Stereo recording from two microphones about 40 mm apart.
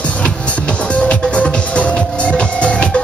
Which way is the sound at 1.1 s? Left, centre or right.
Left.